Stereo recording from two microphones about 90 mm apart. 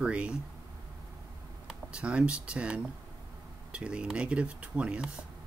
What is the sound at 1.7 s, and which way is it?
Speech, 10° right (ahead or behind).